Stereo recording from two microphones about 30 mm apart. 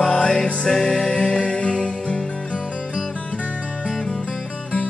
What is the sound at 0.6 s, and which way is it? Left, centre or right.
Music, centre.